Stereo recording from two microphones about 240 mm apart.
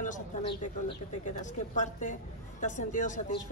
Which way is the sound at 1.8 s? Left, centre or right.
Left.